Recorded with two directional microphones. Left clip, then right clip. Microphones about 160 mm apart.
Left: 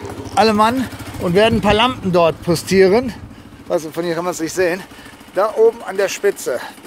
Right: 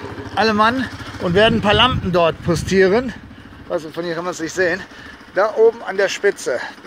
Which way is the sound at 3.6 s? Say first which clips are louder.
Left 3 dB; 40° left (ahead or behind).